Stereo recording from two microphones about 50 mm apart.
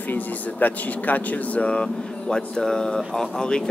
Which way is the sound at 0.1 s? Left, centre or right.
Left.